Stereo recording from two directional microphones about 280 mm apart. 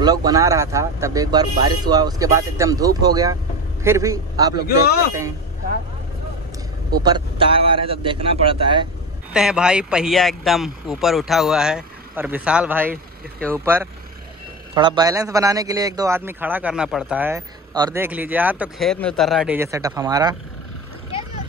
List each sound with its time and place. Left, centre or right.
0.0 s a man's voice: centre
7.0 s a man's voice: centre
9.3 s a man's voice: centre